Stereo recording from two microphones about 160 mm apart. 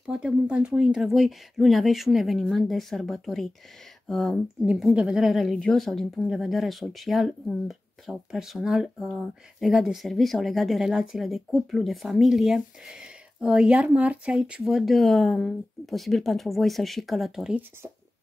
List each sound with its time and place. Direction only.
0.0 s speech: 5° right (ahead or behind)